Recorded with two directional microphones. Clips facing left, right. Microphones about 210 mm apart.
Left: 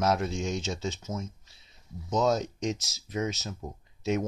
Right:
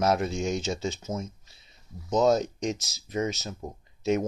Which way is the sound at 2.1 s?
Centre (ahead or behind).